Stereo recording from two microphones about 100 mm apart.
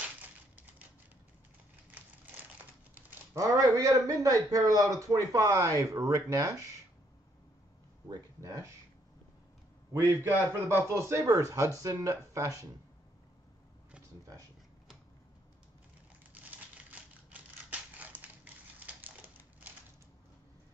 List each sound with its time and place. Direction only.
0.2 s crushing: 15° right (ahead or behind)
3.3 s a man's voice: 35° right (ahead or behind)
8.1 s a man's voice: 35° right (ahead or behind)
9.9 s a man's voice: 25° right (ahead or behind)
16.3 s typewriter: 15° right (ahead or behind)